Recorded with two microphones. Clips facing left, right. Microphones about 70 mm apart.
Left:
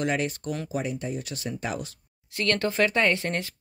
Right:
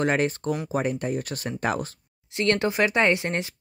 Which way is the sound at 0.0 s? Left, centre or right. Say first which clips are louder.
Right 4 dB; right.